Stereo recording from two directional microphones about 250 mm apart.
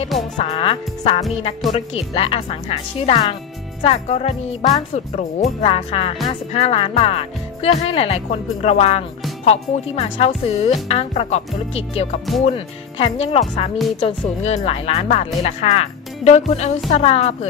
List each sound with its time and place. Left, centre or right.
0.4 s speech: left